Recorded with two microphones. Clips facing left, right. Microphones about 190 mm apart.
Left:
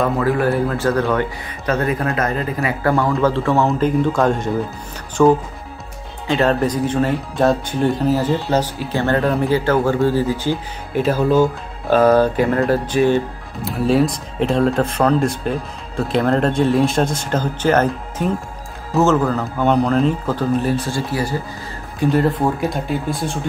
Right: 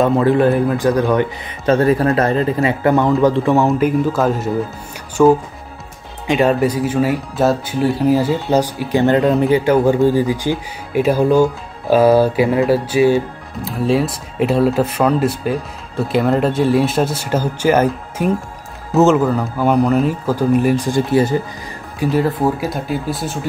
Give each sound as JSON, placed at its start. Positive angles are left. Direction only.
{"t": 0.0, "sound": "speech", "side_deg": -25}
{"t": 1.7, "sound": "speech", "side_deg": -30}
{"t": 19.2, "sound": "speech", "side_deg": -5}
{"t": 22.0, "sound": "speech", "side_deg": 0}